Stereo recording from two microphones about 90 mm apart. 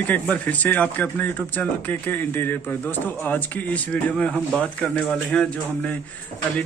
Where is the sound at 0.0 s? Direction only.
15° left (ahead or behind).